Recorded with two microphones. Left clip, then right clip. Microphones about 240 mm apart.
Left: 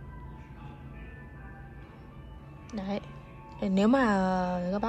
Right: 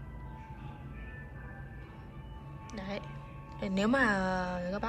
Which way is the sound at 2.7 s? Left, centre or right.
Centre.